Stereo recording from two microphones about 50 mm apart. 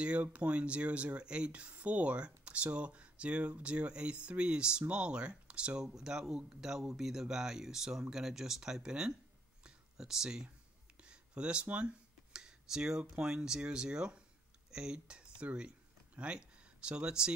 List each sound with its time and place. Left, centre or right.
0.0 s speech: right
9.6 s a sound: centre
11.6 s speech: right
12.3 s computer keyboard: centre
13.1 s speech: centre